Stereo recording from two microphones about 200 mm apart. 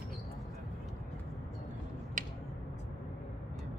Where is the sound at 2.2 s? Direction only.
40° right (ahead or behind).